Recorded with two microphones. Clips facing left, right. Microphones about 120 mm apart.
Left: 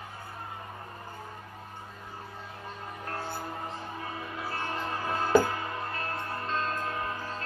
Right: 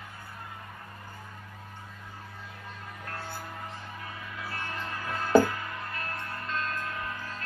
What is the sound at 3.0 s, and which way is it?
Music, 30° left (ahead or behind).